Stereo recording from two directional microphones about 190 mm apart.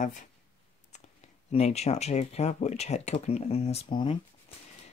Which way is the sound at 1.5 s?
35° left (ahead or behind).